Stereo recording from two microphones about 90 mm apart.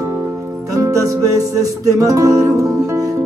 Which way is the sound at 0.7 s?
40° right (ahead or behind).